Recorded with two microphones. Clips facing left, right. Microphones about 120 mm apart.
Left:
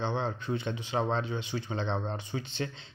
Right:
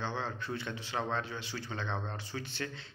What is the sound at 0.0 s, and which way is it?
Speech, 20° left (ahead or behind).